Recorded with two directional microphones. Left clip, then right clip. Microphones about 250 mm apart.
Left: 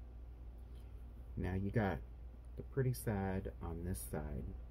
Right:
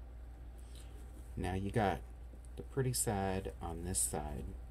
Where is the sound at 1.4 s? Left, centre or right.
Centre.